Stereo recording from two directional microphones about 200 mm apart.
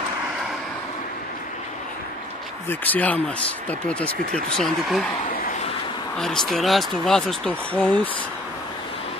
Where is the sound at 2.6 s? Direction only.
10° left (ahead or behind).